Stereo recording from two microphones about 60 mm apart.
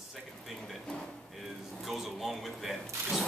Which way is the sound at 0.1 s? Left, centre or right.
Centre.